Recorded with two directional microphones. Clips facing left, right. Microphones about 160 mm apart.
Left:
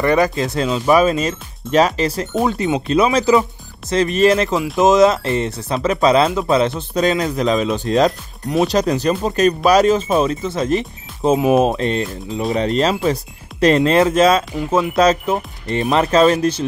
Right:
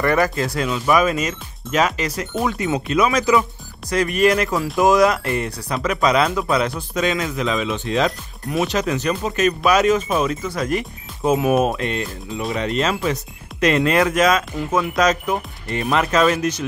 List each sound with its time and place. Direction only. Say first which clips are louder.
0.0 s speech: left 3 dB; 20° left (ahead or behind)